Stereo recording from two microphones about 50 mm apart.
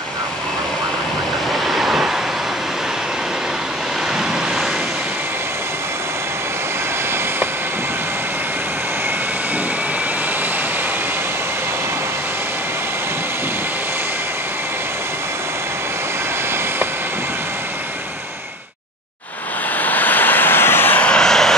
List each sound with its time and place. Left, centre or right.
1.7 s waves: centre
19.8 s vehicle: left
21.0 s vehicle: centre